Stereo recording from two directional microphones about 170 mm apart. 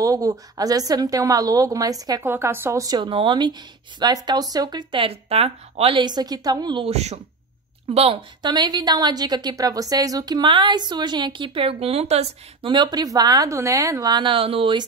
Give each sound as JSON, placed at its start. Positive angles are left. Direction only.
{"t": 0.0, "sound": "a woman's voice", "side_deg": -20}
{"t": 12.7, "sound": "a woman's voice", "side_deg": -25}